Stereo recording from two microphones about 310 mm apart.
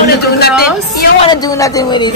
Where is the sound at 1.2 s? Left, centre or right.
Centre.